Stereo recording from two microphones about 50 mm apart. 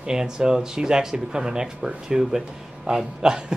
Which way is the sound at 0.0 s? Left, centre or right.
Centre.